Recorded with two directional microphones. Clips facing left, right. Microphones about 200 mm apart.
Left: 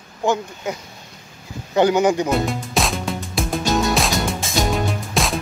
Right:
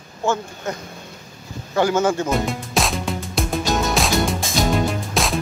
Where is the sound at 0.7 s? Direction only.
10° left (ahead or behind).